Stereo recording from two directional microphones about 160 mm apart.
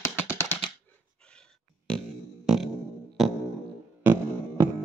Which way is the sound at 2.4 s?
Centre (ahead or behind).